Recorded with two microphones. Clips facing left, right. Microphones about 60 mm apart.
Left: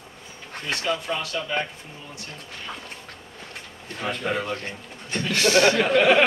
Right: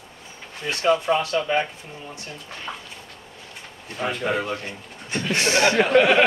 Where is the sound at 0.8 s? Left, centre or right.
Right.